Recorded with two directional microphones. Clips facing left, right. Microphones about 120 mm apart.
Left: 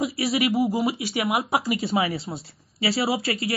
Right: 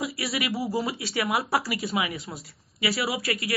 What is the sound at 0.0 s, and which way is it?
Speech, 25° left (ahead or behind).